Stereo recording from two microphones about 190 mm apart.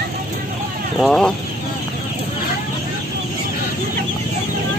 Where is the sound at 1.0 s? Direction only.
Centre (ahead or behind).